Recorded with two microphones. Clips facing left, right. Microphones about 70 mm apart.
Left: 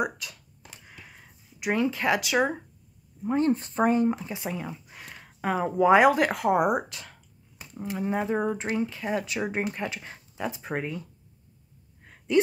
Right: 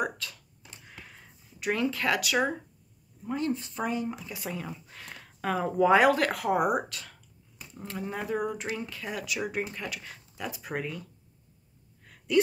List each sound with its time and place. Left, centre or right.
0.0 s speech: centre
0.8 s a sound: centre
1.6 s speech: left
3.3 s speech: left
4.3 s speech: left
12.0 s gasp: left